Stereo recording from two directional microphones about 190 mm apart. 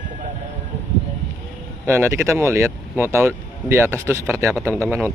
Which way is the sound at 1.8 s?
15° right (ahead or behind).